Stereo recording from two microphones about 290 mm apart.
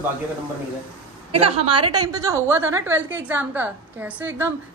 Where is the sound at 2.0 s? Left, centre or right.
Centre.